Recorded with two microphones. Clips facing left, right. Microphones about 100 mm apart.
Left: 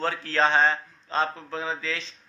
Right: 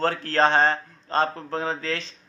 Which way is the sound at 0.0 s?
50° right (ahead or behind).